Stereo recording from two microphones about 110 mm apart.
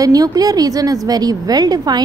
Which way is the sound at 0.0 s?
35° right (ahead or behind).